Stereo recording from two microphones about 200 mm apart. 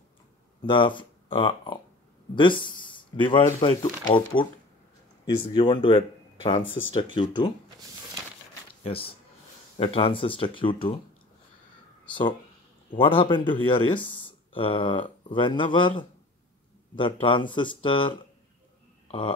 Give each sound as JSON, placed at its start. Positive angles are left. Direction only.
{"t": 0.6, "sound": "speech", "side_deg": 25}
{"t": 4.4, "sound": "speech", "side_deg": 5}
{"t": 5.2, "sound": "speech", "side_deg": 25}
{"t": 8.8, "sound": "speech", "side_deg": 25}
{"t": 12.1, "sound": "speech", "side_deg": 25}
{"t": 16.9, "sound": "speech", "side_deg": 25}
{"t": 19.0, "sound": "a sound", "side_deg": 25}